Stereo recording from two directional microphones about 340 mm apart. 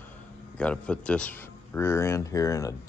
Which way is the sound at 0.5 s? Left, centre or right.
Centre.